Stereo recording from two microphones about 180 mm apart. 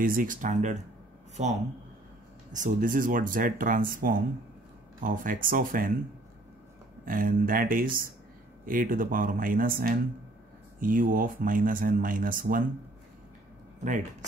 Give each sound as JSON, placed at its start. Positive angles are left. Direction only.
{"t": 0.0, "sound": "speech", "side_deg": -50}
{"t": 7.1, "sound": "speech", "side_deg": -50}